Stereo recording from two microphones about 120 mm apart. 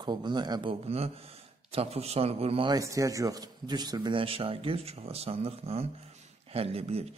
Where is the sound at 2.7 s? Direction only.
30° right (ahead or behind).